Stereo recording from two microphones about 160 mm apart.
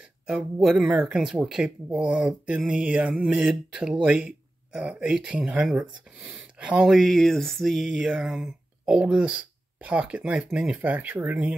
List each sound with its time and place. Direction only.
0.3 s speech: 10° right (ahead or behind)